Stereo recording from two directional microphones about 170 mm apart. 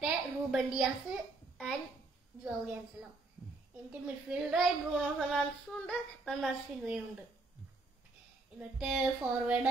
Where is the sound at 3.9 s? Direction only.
5° right (ahead or behind).